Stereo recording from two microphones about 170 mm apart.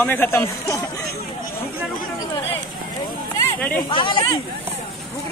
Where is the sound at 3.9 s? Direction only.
30° left (ahead or behind).